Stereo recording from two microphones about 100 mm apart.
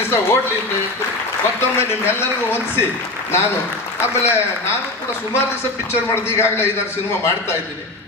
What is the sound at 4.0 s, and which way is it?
Speech, 25° left (ahead or behind).